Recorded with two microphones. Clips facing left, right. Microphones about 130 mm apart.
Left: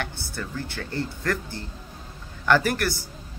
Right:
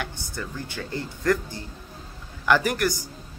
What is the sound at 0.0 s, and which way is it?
A man's voice, 15° right (ahead or behind).